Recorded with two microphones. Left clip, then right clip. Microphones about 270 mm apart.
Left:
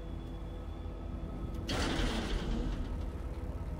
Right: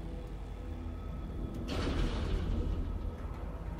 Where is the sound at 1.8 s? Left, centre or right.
Centre.